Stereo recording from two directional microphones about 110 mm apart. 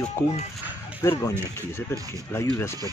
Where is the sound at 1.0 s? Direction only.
25° left (ahead or behind).